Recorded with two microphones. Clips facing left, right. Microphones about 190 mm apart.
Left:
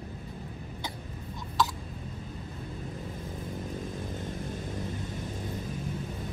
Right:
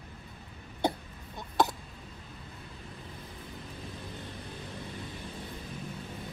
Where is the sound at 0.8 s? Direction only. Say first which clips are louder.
Right 12 dB; 60° right (ahead or behind).